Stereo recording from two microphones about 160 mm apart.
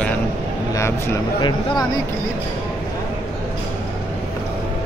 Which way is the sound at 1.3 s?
30° left (ahead or behind).